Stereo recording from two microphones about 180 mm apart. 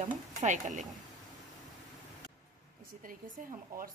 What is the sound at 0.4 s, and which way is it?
Stir, 45° right (ahead or behind).